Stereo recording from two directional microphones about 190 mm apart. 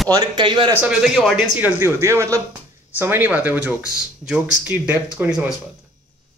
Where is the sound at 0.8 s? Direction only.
5° right (ahead or behind).